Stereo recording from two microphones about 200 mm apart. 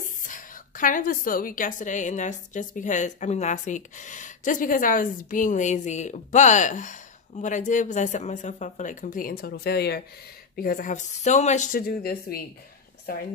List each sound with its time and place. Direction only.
0.0 s a woman's voice: 40° left (ahead or behind)